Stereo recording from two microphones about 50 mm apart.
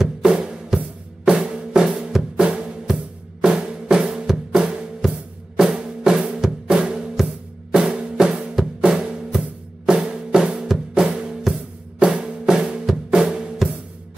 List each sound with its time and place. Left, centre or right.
0.0 s music: centre
1.2 s drum: centre